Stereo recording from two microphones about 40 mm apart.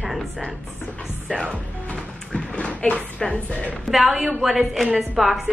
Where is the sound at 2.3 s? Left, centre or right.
Left.